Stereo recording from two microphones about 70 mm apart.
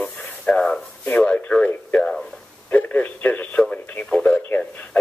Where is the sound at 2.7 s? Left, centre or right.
Left.